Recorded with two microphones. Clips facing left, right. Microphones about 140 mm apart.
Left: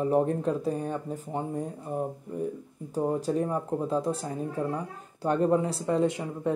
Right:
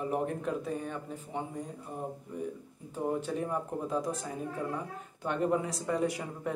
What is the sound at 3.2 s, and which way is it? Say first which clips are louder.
Speech: left 5 dB; 35° left (ahead or behind).